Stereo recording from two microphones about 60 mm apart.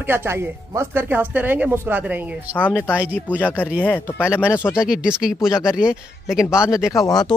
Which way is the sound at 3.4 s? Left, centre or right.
Left.